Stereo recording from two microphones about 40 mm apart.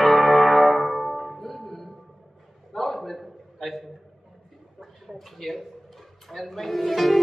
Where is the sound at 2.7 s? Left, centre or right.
Centre.